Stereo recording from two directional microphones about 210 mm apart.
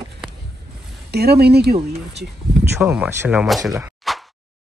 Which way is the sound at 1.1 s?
50° right (ahead or behind).